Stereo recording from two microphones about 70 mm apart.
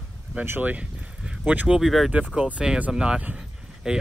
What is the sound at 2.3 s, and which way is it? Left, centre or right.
Speech, centre.